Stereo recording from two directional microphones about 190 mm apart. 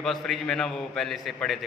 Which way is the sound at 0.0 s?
Centre (ahead or behind).